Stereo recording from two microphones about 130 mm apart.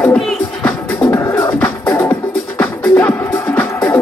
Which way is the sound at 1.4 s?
15° left (ahead or behind).